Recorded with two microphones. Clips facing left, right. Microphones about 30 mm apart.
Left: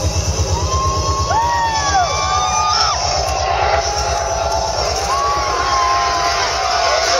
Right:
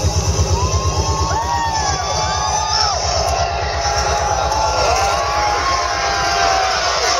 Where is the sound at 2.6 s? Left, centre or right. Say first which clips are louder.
Left 2 dB; left.